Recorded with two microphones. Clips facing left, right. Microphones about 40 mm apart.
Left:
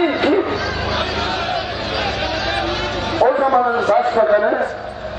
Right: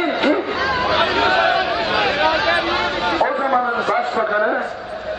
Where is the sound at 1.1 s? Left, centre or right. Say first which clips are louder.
Right 6 dB; right.